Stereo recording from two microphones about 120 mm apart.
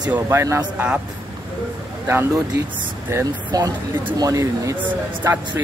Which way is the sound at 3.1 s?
30° right (ahead or behind).